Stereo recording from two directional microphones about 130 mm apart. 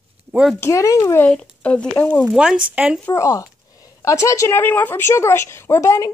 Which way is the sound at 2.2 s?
5° right (ahead or behind).